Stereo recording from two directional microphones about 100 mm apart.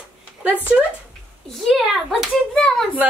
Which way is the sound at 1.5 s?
5° left (ahead or behind).